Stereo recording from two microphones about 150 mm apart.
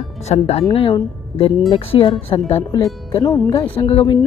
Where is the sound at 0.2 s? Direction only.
45° left (ahead or behind).